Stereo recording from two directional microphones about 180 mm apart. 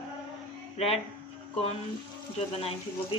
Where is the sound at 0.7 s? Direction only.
35° left (ahead or behind).